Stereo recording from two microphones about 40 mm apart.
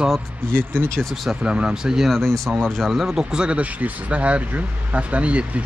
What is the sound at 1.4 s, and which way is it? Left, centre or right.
Speech, right.